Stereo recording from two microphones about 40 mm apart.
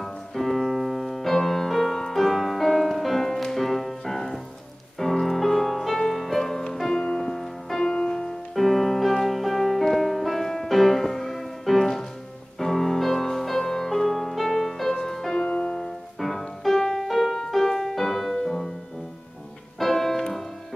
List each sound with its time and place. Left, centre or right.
0.0 s piano: centre
2.9 s music: centre; by 7.2 s left
7.2 s music: centre
7.8 s music: centre
8.5 s music: centre
15.3 s music: left
15.7 s music: centre
19.8 s music: centre